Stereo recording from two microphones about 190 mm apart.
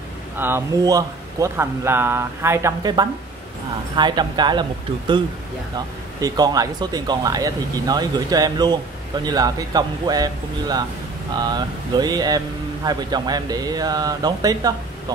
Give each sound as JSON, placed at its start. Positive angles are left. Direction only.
{"t": 0.4, "sound": "a man's voice", "side_deg": -15}
{"t": 6.2, "sound": "speech", "side_deg": -20}